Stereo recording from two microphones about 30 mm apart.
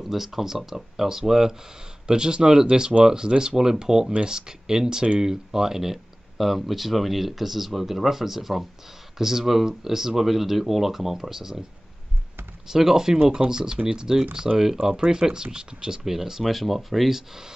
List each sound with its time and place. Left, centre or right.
0.0 s speech: centre
2.0 s speech: right
6.3 s speech: centre
12.6 s speech: centre
16.0 s speech: centre
17.1 s speech: centre